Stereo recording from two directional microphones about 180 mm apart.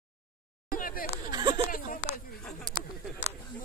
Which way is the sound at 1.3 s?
25° right (ahead or behind).